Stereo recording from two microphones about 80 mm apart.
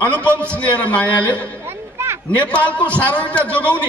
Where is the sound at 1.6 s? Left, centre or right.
Right.